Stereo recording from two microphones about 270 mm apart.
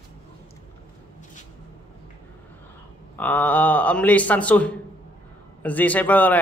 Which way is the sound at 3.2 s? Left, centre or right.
Centre.